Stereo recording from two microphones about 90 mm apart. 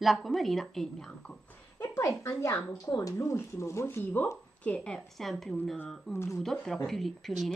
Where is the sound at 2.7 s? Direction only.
40° left (ahead or behind).